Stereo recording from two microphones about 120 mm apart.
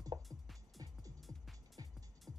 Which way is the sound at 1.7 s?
30° right (ahead or behind).